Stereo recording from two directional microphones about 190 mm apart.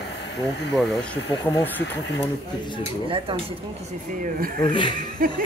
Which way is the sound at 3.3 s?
30° right (ahead or behind).